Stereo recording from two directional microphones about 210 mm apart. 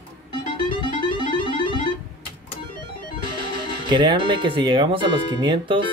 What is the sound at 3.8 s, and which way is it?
Speech, 20° right (ahead or behind).